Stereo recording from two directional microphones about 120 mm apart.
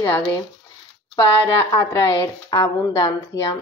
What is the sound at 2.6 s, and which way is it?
Speech, 25° left (ahead or behind).